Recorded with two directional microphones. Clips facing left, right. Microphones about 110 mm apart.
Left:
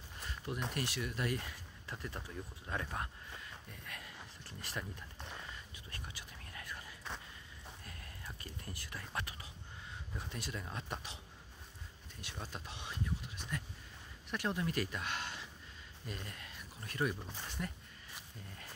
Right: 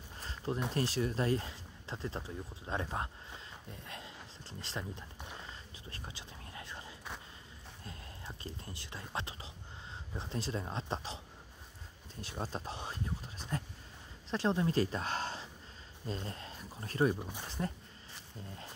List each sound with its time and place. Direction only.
0.2 s a sound: 30° right (ahead or behind)
0.7 s speech: 30° right (ahead or behind)
5.4 s whispering: 30° right (ahead or behind)
10.1 s speech: 30° right (ahead or behind)
12.2 s speech: 35° right (ahead or behind)
17.2 s speech: 15° right (ahead or behind)
17.5 s speech: 30° right (ahead or behind)